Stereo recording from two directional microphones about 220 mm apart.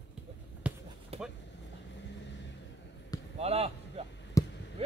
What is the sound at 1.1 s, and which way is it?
Vehicle, 25° right (ahead or behind).